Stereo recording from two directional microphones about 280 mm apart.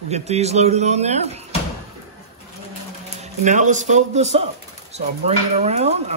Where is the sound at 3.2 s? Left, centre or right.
Right.